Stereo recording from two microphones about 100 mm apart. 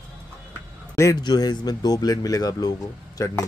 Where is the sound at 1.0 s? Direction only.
40° left (ahead or behind).